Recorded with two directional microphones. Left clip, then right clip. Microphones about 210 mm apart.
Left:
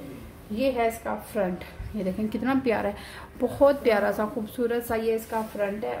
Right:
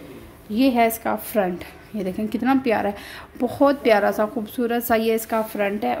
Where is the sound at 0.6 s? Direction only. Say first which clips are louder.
Right 6 dB; 50° right (ahead or behind).